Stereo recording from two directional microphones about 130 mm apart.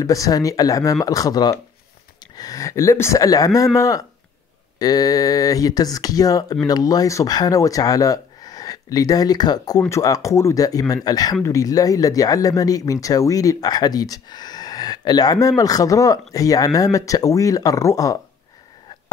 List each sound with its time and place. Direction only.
0.0 s speech: 25° left (ahead or behind)